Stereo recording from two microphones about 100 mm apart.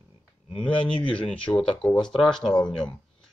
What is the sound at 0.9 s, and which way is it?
Speech, 60° left (ahead or behind).